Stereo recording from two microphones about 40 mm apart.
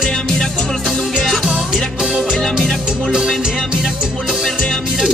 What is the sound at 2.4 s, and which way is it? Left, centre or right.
Music, centre.